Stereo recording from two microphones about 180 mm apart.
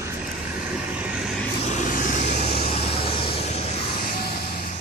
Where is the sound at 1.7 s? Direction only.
45° left (ahead or behind).